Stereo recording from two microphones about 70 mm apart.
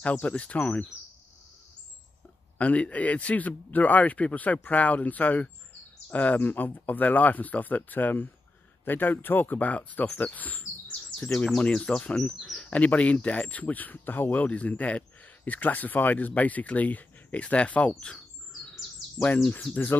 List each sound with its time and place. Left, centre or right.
0.0 s speech: centre
2.6 s speech: centre